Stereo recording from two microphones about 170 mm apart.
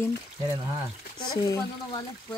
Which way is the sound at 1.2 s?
25° left (ahead or behind).